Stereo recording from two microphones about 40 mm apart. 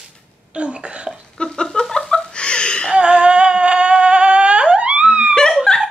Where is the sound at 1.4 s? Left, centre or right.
Centre.